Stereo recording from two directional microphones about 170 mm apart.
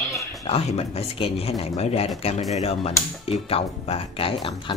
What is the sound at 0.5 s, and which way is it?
Speech, 35° left (ahead or behind).